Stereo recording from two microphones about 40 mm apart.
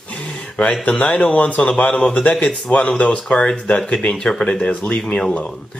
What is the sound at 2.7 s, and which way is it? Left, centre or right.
Speech, left.